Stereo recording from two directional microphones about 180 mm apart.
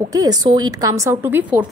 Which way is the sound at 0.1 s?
20° right (ahead or behind).